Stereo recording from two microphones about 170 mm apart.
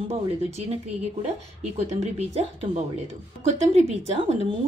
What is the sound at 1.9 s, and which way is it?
Speech, 40° right (ahead or behind).